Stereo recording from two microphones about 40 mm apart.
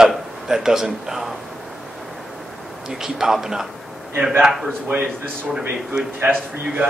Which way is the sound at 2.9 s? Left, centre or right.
Centre.